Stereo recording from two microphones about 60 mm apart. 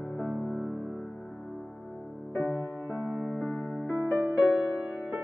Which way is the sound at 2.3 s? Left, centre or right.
Left.